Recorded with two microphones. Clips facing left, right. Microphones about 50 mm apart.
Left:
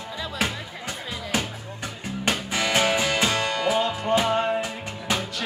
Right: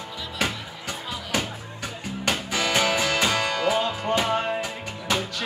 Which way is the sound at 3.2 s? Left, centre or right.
Centre.